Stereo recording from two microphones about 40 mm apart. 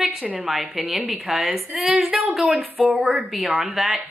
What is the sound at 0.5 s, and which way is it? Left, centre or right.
A woman's voice, centre.